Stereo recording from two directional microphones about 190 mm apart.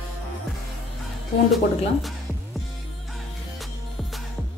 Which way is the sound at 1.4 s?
Centre (ahead or behind).